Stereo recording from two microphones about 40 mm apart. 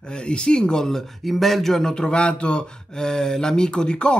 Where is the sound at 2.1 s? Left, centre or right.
Left.